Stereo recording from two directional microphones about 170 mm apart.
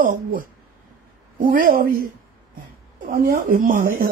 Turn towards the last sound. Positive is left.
turn(degrees=-55)  # may be behind; listen again after turning